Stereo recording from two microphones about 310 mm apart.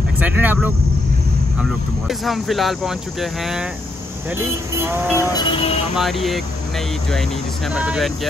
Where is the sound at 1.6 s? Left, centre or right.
Centre.